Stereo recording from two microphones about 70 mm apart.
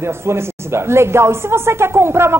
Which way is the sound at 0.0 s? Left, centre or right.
Right.